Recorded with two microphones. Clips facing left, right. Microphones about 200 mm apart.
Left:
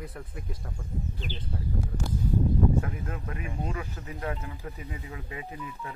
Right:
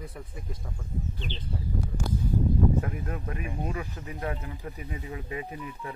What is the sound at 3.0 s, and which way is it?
Speech, 35° right (ahead or behind).